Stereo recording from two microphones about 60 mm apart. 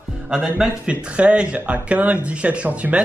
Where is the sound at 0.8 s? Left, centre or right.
Centre.